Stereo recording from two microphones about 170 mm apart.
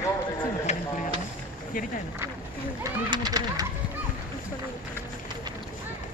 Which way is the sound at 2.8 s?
25° right (ahead or behind).